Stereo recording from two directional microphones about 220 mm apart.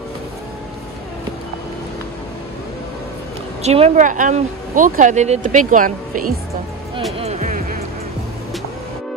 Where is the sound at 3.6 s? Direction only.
30° right (ahead or behind).